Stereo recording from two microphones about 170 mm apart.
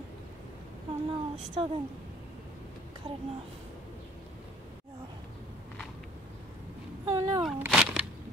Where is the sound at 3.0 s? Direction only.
35° right (ahead or behind).